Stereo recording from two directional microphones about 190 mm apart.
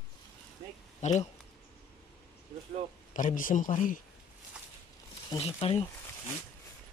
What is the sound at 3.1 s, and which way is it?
Speech, 45° left (ahead or behind).